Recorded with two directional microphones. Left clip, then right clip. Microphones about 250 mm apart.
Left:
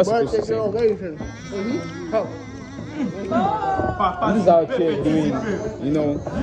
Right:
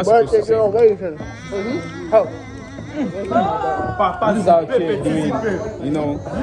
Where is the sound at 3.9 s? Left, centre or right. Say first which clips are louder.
Right 4 dB; right.